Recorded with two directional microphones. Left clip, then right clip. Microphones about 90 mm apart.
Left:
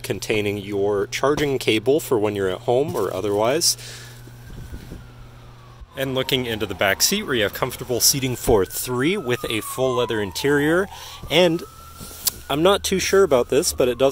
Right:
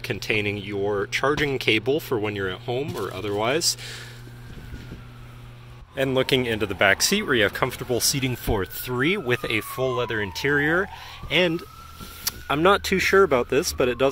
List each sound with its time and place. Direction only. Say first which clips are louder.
0.0 s speech: left 2 dB; 45° left (ahead or behind)
2.2 s speech: left 6 dB; 65° left (ahead or behind); by 3.0 s 90° left
3.0 s speech: left 6 dB; 50° left (ahead or behind)
3.4 s speech: left 3 dB; 30° left (ahead or behind)
5.9 s a man's voice: right 1 dB; 5° left (ahead or behind)
6.7 s speech: even; 20° left (ahead or behind)
8.4 s speech: left 8 dB; 50° left (ahead or behind)
8.9 s speech: even; 30° left (ahead or behind)
9.8 s speech: left 7 dB; 50° left (ahead or behind)
12.3 s speech: left 1 dB; 25° left (ahead or behind)